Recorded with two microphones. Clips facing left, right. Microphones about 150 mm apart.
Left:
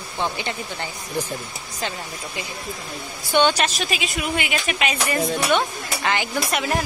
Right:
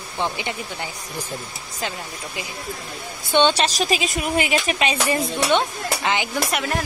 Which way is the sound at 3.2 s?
25° right (ahead or behind).